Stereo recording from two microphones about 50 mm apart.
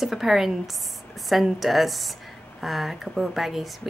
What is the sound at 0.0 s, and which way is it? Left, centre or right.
Speech, centre.